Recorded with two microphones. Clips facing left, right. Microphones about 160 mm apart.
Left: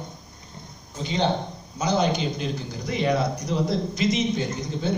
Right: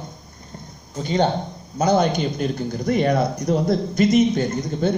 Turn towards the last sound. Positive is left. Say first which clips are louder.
# right 6 dB
turn(degrees=-50)  # may be behind; listen again after turning